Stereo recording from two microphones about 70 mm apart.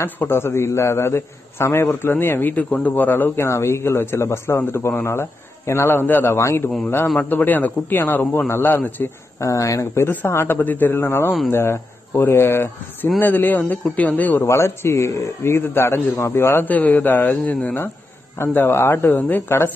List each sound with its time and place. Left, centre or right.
0.0 s a man's voice: left
3.4 s a man's voice: left
7.2 s a man's voice: left
9.4 s speech: left
10.0 s a man's voice: left
14.4 s a man's voice: left
16.6 s a man's voice: left
19.0 s a man's voice: left